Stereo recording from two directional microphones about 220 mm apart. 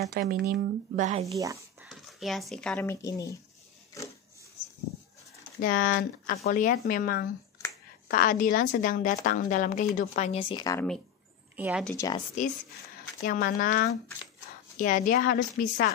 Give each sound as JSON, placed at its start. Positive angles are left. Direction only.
{"t": 0.1, "sound": "speech", "side_deg": -40}
{"t": 1.3, "sound": "speech", "side_deg": -15}
{"t": 1.9, "sound": "speech", "side_deg": 0}
{"t": 5.6, "sound": "a woman's voice", "side_deg": 40}
{"t": 11.5, "sound": "a woman's voice", "side_deg": -5}
{"t": 11.9, "sound": "speech", "side_deg": 15}
{"t": 13.2, "sound": "a woman's voice", "side_deg": 40}